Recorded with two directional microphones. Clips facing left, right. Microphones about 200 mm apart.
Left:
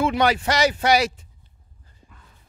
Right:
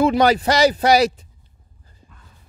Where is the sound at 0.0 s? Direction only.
35° right (ahead or behind).